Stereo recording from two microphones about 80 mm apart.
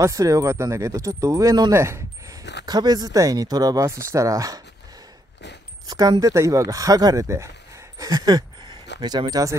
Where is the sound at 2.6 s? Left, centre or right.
Right.